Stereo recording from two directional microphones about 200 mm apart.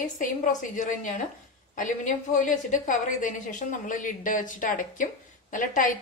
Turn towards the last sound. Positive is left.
turn(degrees=40)  # may be behind; listen again after turning